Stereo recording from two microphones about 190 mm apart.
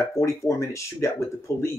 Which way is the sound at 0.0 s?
15° left (ahead or behind).